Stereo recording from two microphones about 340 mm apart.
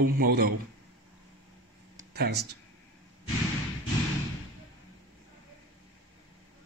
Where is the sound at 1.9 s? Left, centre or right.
Right.